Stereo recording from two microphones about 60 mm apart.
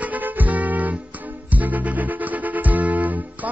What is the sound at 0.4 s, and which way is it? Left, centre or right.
Music, right.